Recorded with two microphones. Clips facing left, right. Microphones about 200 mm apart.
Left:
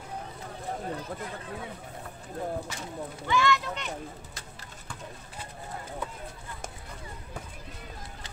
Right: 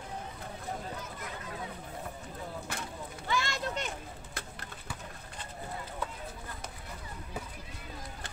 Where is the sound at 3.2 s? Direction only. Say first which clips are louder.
Left 7 dB; 40° right (ahead or behind).